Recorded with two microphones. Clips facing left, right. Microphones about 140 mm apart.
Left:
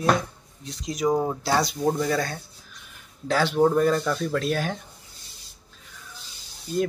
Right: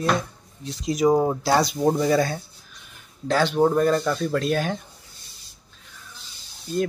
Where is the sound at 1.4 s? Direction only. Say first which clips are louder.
Right 3 dB; 5° right (ahead or behind).